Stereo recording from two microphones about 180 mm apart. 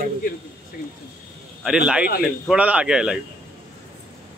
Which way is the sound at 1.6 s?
5° right (ahead or behind).